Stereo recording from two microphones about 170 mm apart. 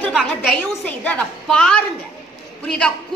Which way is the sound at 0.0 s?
Centre (ahead or behind).